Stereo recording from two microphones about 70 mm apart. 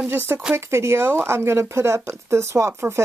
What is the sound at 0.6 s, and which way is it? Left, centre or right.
Speech, right.